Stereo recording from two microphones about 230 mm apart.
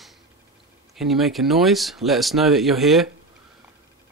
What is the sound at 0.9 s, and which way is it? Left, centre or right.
Speech, centre.